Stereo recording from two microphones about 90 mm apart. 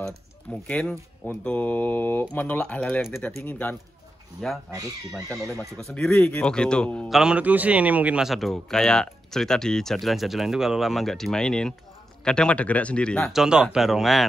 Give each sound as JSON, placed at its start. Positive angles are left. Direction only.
{"t": 0.7, "sound": "speech", "side_deg": 15}
{"t": 4.4, "sound": "speech", "side_deg": 5}
{"t": 5.8, "sound": "a man's voice", "side_deg": 10}
{"t": 7.1, "sound": "speech", "side_deg": -5}
{"t": 7.3, "sound": "speech", "side_deg": -15}
{"t": 8.3, "sound": "a man's voice", "side_deg": 0}
{"t": 13.3, "sound": "speech", "side_deg": -5}